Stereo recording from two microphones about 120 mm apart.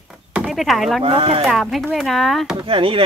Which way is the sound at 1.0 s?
50° right (ahead or behind).